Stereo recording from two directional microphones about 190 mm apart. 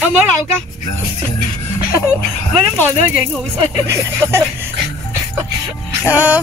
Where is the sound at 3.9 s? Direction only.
10° right (ahead or behind).